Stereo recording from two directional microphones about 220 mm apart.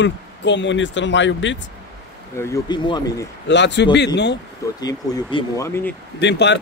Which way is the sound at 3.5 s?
50° left (ahead or behind).